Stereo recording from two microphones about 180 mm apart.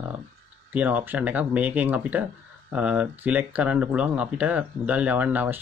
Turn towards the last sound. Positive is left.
turn(degrees=-10)  # may be behind; listen again after turning